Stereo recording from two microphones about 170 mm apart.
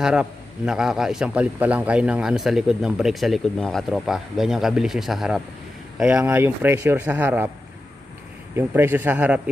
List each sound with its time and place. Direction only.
0.0 s a man's voice: 5° right (ahead or behind)
8.5 s speech: 10° right (ahead or behind)